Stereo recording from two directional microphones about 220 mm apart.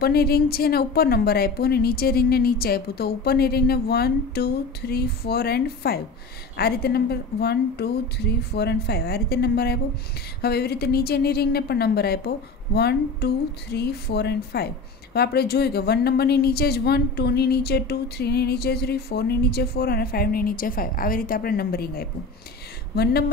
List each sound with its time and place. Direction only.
0.0 s a woman's voice: 45° left (ahead or behind)